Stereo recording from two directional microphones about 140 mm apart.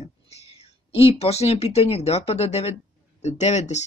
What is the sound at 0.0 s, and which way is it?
Speech, 50° left (ahead or behind).